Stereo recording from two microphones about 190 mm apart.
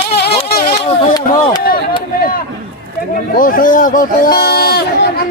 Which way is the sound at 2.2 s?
50° left (ahead or behind).